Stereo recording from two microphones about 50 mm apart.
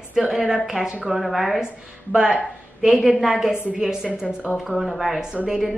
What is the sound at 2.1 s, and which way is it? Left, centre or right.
Speech, centre.